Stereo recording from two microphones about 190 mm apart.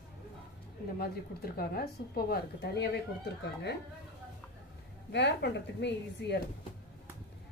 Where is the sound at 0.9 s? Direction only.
55° left (ahead or behind).